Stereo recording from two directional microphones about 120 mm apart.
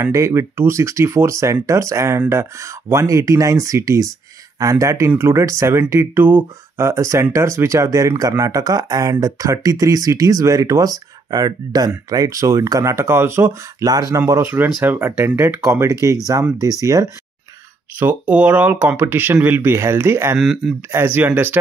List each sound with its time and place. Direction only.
0.1 s speech: 25° right (ahead or behind)
17.9 s speech: 15° right (ahead or behind)
20.3 s speech: 5° right (ahead or behind)
20.9 s speech: 20° right (ahead or behind)